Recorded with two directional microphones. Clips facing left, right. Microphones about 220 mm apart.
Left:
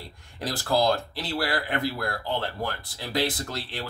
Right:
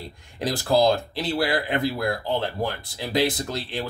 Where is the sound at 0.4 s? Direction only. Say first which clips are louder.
Right 4 dB; 15° right (ahead or behind).